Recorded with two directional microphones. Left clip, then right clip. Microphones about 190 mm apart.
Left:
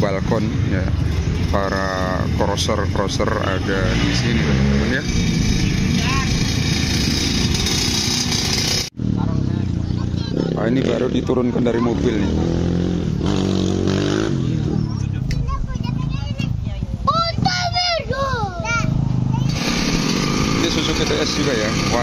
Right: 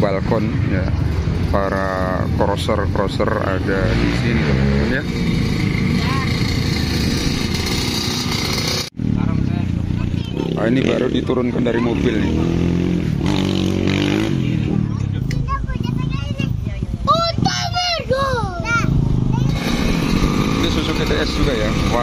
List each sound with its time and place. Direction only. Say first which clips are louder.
0.0 s vehicle: right 2 dB; centre (ahead or behind)
1.5 s speech: right 1 dB; centre (ahead or behind)
10.6 s speech: right 3 dB; 5° right (ahead or behind)
11.1 s speech: even; 10° left (ahead or behind)
11.8 s speech: right 1 dB; centre (ahead or behind)
13.3 s vehicle: right 1 dB; 40° right (ahead or behind)
17.1 s a sound: right 2 dB; centre (ahead or behind)
19.6 s chainsaw: left 2 dB; 5° right (ahead or behind)
20.6 s vehicle: left 1 dB; 5° right (ahead or behind)